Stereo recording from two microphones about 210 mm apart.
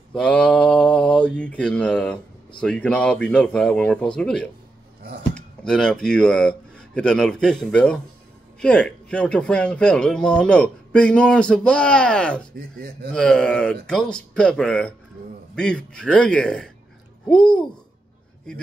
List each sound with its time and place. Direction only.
0.1 s mantra: 5° left (ahead or behind)
2.6 s a man's voice: 5° left (ahead or behind)
12.5 s speech: 45° right (ahead or behind)
13.1 s a man's voice: 5° left (ahead or behind)